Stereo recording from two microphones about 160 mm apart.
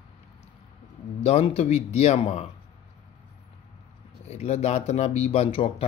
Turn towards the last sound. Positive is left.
turn(degrees=35)  # may be behind; listen again after turning